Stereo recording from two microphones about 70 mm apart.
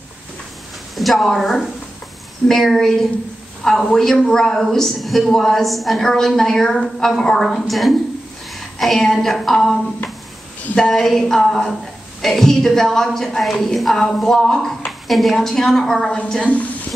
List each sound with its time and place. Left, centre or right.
0.9 s a woman's voice: centre
10.8 s a woman's voice: centre
16.3 s a woman's voice: centre